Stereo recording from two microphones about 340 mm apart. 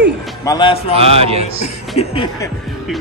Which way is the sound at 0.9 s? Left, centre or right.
Centre.